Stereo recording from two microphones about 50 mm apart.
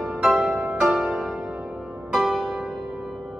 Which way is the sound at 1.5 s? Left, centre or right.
Centre.